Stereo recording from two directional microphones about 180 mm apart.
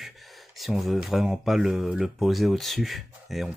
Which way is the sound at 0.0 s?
Centre (ahead or behind).